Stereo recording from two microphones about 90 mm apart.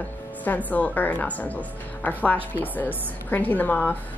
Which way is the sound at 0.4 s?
20° left (ahead or behind).